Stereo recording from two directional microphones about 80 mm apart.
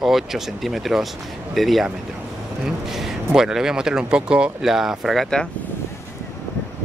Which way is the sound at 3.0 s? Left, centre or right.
Centre.